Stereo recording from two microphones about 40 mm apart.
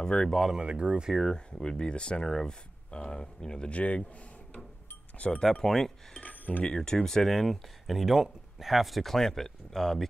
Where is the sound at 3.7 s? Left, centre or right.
Left.